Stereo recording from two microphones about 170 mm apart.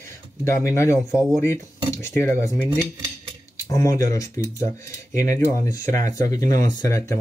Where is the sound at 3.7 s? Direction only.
20° left (ahead or behind).